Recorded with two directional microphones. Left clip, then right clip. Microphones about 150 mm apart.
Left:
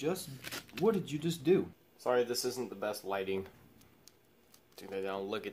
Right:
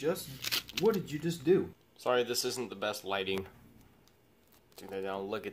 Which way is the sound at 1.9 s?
10° right (ahead or behind).